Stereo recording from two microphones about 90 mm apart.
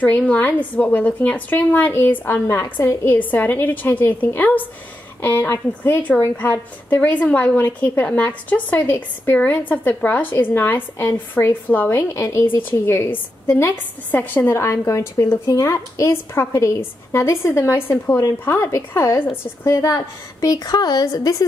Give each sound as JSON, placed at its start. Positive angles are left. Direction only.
{"t": 0.3, "sound": "a woman's voice", "side_deg": 20}
{"t": 12.1, "sound": "a woman's voice", "side_deg": 35}